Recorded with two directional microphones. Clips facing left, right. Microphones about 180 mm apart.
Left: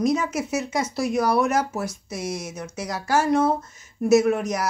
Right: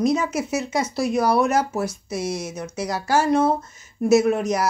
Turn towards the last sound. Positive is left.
turn(degrees=-30)  # may be behind; listen again after turning